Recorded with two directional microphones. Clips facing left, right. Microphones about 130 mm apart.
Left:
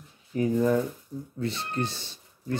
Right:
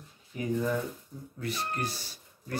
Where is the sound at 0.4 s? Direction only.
40° left (ahead or behind).